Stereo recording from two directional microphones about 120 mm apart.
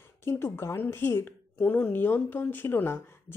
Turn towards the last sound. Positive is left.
turn(degrees=20)  # may be behind; listen again after turning